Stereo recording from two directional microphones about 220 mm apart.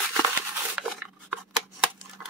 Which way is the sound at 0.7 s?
Centre (ahead or behind).